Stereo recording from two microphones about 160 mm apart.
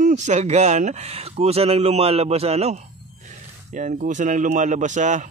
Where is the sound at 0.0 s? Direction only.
50° right (ahead or behind).